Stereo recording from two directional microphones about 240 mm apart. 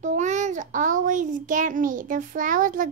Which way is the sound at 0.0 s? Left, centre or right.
Right.